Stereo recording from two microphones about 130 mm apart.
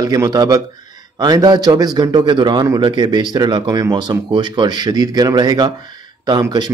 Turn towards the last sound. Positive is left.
turn(degrees=-30)  # may be behind; listen again after turning